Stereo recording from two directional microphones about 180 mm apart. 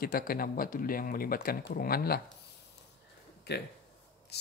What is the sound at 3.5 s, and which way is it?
Speech, 65° left (ahead or behind).